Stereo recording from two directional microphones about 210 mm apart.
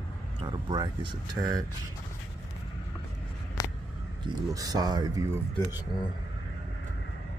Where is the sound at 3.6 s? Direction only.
15° left (ahead or behind).